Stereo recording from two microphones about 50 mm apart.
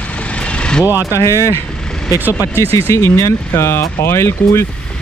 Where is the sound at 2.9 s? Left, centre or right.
Left.